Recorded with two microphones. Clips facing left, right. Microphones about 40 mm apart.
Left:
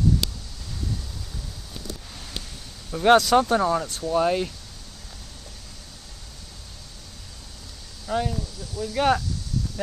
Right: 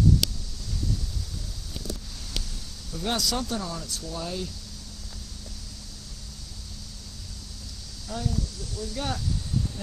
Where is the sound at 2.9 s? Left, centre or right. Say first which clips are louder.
Left 12 dB; left.